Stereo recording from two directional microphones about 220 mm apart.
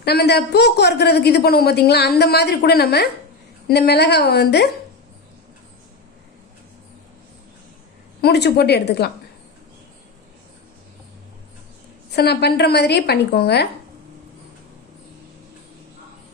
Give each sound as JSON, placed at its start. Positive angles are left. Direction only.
{"t": 0.0, "sound": "a woman's voice", "side_deg": 45}
{"t": 8.2, "sound": "a woman's voice", "side_deg": 50}
{"t": 12.2, "sound": "a woman's voice", "side_deg": 50}